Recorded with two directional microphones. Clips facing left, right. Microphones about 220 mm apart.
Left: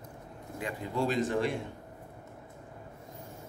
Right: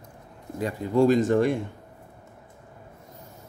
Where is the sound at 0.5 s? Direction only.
40° right (ahead or behind).